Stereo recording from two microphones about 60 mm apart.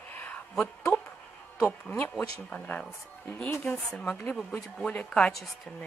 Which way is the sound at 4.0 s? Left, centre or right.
Left.